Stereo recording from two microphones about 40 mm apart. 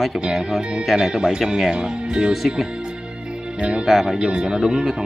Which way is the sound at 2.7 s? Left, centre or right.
Right.